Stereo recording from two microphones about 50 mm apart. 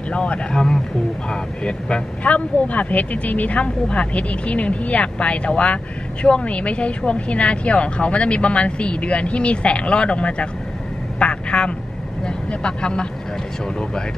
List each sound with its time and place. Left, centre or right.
0.1 s speech: left
0.6 s speech: centre
11.1 s vehicle: centre
12.3 s speech: centre